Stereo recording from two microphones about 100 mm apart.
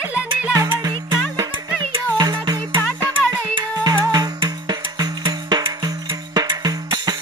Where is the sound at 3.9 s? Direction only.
40° right (ahead or behind).